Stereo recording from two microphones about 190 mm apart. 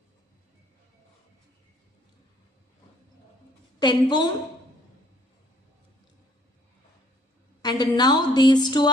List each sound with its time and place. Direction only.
3.8 s speech: 25° left (ahead or behind)
7.6 s speech: 20° left (ahead or behind)